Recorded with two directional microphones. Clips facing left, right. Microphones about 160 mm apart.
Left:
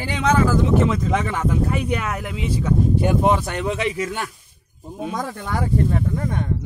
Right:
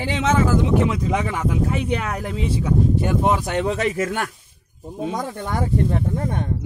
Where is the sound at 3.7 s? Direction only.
45° right (ahead or behind).